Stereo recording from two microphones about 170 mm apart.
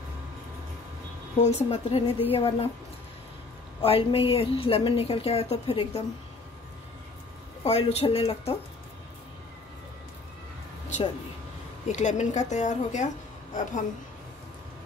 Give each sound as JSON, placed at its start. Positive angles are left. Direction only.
{"t": 1.4, "sound": "a woman's voice", "side_deg": 40}
{"t": 3.8, "sound": "a woman's voice", "side_deg": 35}
{"t": 7.6, "sound": "a woman's voice", "side_deg": 35}
{"t": 11.9, "sound": "a woman's voice", "side_deg": 45}